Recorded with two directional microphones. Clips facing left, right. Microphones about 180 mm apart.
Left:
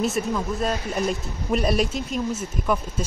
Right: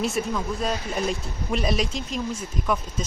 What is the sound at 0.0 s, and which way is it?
Speech, centre (ahead or behind).